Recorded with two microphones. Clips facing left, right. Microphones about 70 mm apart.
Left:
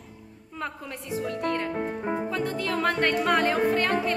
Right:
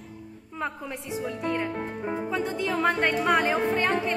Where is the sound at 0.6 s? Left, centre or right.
Centre.